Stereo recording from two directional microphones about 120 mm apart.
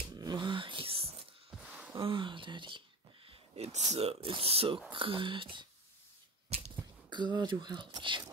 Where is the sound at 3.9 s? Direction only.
50° right (ahead or behind).